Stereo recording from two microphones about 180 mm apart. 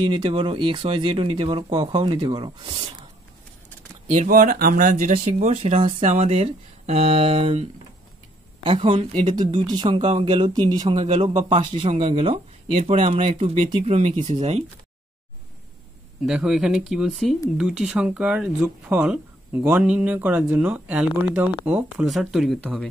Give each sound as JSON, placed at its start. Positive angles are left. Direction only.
{"t": 0.0, "sound": "speech", "side_deg": -30}
{"t": 4.1, "sound": "speech", "side_deg": -45}
{"t": 5.5, "sound": "speech", "side_deg": -35}
{"t": 8.6, "sound": "speech", "side_deg": -30}
{"t": 16.3, "sound": "speech", "side_deg": -5}